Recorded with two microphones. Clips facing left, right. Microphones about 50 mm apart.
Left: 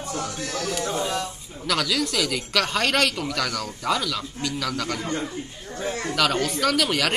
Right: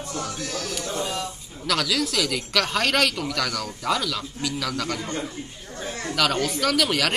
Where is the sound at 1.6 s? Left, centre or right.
Centre.